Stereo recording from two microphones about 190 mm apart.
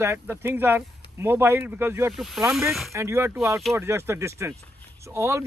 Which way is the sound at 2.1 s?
Centre (ahead or behind).